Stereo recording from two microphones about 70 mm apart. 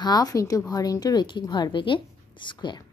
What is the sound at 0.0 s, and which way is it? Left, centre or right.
A woman's voice, left.